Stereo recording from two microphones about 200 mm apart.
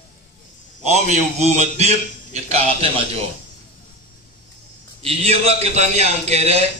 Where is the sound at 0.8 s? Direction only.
35° right (ahead or behind).